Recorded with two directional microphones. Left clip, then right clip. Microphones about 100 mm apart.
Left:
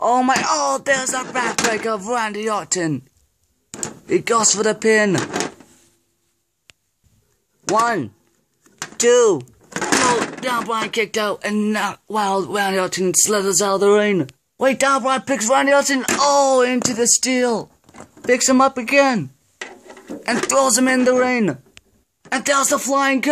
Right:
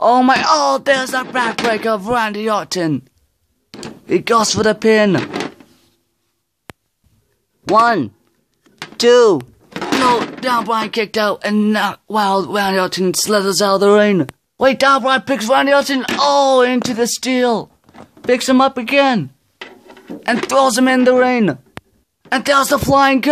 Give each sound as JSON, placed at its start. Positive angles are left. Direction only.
{"t": 0.0, "sound": "speech", "side_deg": -25}
{"t": 4.0, "sound": "speech", "side_deg": -20}
{"t": 7.8, "sound": "speech", "side_deg": -25}
{"t": 8.6, "sound": "a sound", "side_deg": -15}
{"t": 9.8, "sound": "breaking", "side_deg": -15}
{"t": 10.4, "sound": "speech", "side_deg": -25}
{"t": 20.2, "sound": "speech", "side_deg": -20}
{"t": 21.8, "sound": "a sound", "side_deg": -40}
{"t": 22.3, "sound": "speech", "side_deg": -25}